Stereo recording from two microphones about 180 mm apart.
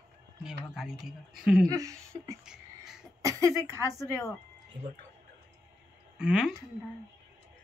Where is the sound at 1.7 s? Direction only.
20° right (ahead or behind).